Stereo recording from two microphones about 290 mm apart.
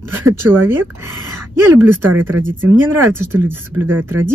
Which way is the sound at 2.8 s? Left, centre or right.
Centre.